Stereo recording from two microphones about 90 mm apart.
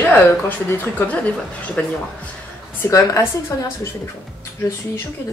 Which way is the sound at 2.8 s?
35° left (ahead or behind).